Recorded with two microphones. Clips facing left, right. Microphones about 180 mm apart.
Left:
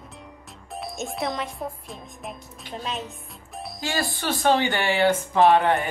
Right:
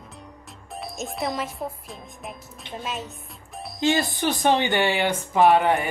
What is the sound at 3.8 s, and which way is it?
Speech, 20° right (ahead or behind).